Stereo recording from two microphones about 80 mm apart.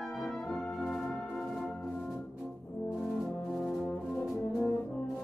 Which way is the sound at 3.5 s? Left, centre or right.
Centre.